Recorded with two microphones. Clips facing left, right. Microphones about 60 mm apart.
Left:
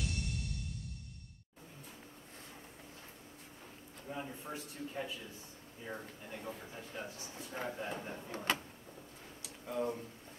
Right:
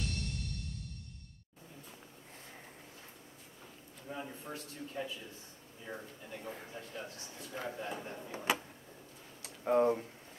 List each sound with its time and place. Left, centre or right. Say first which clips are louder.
4.1 s speech: even; centre
8.5 s vehicle: right 2 dB; centre
9.4 s a sound: right 9 dB; right